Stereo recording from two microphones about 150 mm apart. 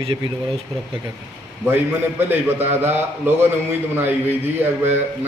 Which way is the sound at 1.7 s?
15° right (ahead or behind).